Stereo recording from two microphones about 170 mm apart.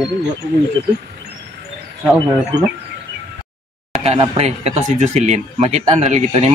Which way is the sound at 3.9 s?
30° right (ahead or behind).